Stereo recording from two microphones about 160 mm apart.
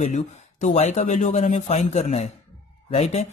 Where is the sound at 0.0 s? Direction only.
50° left (ahead or behind).